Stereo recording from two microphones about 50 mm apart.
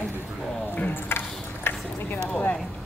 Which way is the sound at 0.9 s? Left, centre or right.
Left.